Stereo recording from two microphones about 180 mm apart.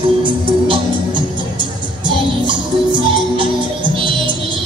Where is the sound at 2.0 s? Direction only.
25° right (ahead or behind).